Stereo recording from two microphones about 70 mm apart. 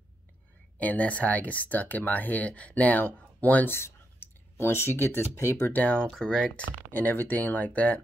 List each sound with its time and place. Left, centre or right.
0.7 s speech: left
3.7 s speech: left
5.7 s speech: left
6.0 s speech: centre
6.6 s speech: left